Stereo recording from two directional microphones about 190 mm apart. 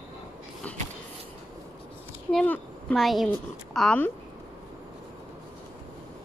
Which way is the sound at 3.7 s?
5° left (ahead or behind).